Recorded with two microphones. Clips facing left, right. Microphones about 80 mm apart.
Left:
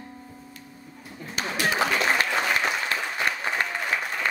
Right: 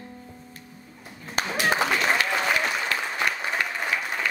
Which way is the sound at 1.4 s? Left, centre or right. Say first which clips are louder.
Right 3 dB; right.